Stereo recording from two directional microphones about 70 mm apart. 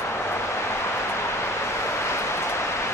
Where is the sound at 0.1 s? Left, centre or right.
Left.